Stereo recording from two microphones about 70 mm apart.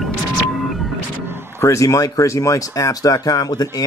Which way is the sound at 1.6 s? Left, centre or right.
Left.